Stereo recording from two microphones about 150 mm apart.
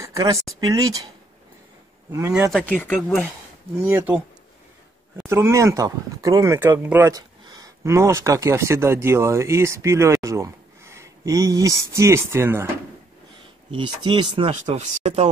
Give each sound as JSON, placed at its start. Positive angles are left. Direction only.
{"t": 0.0, "sound": "speech", "side_deg": -20}
{"t": 2.5, "sound": "speech", "side_deg": 10}
{"t": 3.8, "sound": "speech", "side_deg": -15}
{"t": 5.2, "sound": "speech", "side_deg": -15}
{"t": 7.2, "sound": "speech", "side_deg": -25}
{"t": 13.7, "sound": "speech", "side_deg": -35}
{"t": 14.5, "sound": "speech", "side_deg": -50}